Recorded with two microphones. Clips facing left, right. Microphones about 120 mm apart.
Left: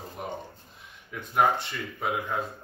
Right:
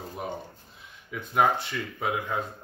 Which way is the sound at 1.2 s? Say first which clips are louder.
Even; centre (ahead or behind).